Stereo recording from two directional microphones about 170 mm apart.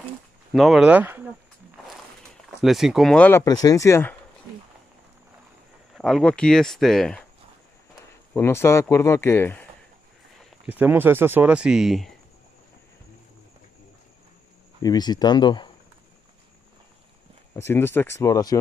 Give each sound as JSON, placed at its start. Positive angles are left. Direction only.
{"t": 0.5, "sound": "speech", "side_deg": 0}
{"t": 2.6, "sound": "speech", "side_deg": 0}
{"t": 3.4, "sound": "speech", "side_deg": 20}
{"t": 5.9, "sound": "speech", "side_deg": 0}
{"t": 8.4, "sound": "speech", "side_deg": 15}
{"t": 10.7, "sound": "speech", "side_deg": -10}
{"t": 14.8, "sound": "speech", "side_deg": 25}
{"t": 17.6, "sound": "speech", "side_deg": 15}